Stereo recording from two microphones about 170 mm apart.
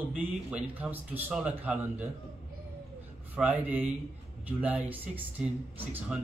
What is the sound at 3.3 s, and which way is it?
A man's voice, 10° right (ahead or behind).